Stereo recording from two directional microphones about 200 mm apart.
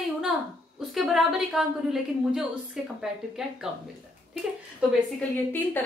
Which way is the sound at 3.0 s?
5° right (ahead or behind).